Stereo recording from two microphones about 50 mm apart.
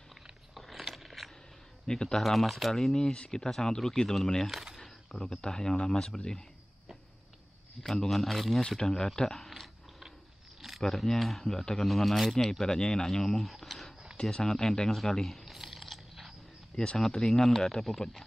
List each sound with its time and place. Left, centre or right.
0.1 s biting: centre
1.9 s speech: centre
2.2 s speech: centre
4.5 s speech: centre
7.8 s speech: centre
9.5 s chewing: centre
10.8 s speech: centre
14.3 s speech: centre
15.4 s mechanisms: centre
16.7 s speech: centre
17.3 s speech: centre